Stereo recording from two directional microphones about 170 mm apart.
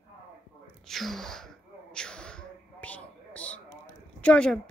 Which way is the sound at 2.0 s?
5° left (ahead or behind).